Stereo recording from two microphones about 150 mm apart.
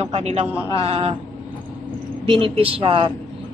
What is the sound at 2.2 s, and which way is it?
Speech, 35° right (ahead or behind).